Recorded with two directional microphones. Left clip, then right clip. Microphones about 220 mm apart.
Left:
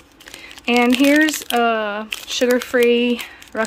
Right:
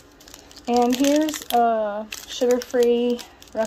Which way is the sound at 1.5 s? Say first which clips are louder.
Right 1 dB; 40° left (ahead or behind).